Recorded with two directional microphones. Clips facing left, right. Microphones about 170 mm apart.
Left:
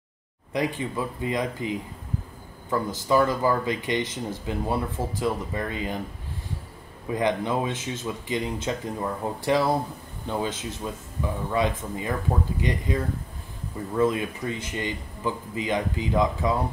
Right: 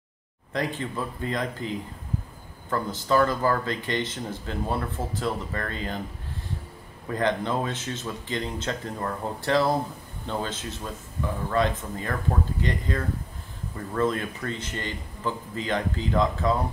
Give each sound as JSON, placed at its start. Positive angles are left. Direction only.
{"t": 0.5, "sound": "speech", "side_deg": 10}
{"t": 2.7, "sound": "speech", "side_deg": 10}
{"t": 7.1, "sound": "speech", "side_deg": 10}